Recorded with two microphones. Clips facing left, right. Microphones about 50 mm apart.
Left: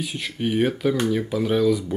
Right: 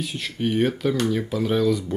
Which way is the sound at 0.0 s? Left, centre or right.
Centre.